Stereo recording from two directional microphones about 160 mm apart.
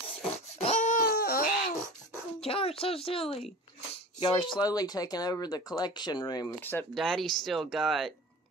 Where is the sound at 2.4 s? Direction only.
35° left (ahead or behind).